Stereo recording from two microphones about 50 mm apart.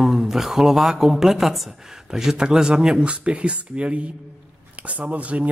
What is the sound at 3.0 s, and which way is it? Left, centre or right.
Speech, right.